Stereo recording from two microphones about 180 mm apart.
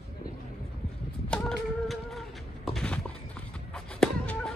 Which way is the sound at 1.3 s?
5° left (ahead or behind).